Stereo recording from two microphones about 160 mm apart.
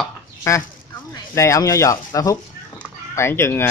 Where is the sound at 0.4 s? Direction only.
20° left (ahead or behind).